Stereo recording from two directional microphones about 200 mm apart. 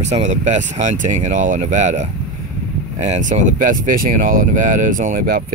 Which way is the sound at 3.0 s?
35° right (ahead or behind).